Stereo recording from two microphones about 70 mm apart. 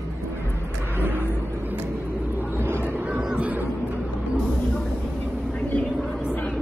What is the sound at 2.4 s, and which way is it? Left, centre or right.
Vehicle, right.